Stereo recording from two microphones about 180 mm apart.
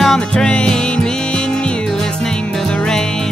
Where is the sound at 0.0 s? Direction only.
5° left (ahead or behind).